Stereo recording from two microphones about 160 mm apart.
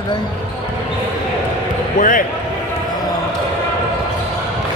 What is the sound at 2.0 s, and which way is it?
Speech, 60° left (ahead or behind).